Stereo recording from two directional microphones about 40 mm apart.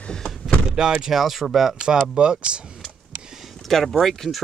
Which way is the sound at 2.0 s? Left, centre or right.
Right.